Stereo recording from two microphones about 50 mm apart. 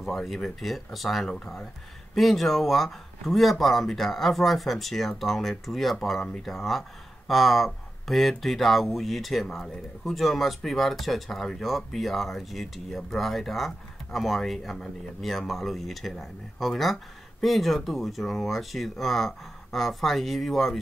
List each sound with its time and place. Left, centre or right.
0.0 s speech: centre
1.2 s speech: centre
2.1 s speech: centre